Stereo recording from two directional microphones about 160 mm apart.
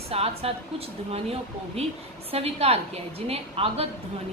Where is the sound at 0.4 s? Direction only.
40° right (ahead or behind).